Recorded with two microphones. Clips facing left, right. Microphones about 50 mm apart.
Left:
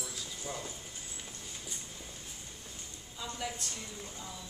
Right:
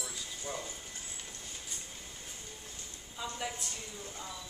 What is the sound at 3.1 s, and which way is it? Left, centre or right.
Speech, centre.